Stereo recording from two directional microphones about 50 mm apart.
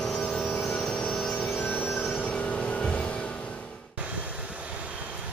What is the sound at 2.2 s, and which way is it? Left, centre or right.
Music, left.